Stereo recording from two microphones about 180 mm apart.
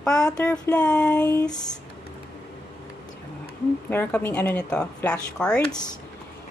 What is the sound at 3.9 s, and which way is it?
Speech, 10° left (ahead or behind).